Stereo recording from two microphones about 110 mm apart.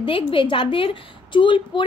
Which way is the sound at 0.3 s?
50° left (ahead or behind).